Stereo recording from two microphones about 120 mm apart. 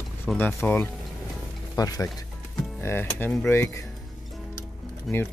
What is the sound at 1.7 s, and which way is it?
Speech, 30° left (ahead or behind).